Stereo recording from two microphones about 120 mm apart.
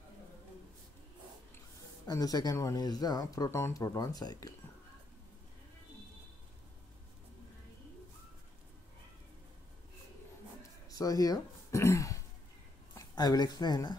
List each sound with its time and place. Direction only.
2.0 s speech: 30° left (ahead or behind)
10.9 s speech: 30° left (ahead or behind)